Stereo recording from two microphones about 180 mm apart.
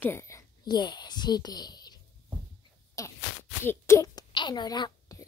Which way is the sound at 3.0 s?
20° left (ahead or behind).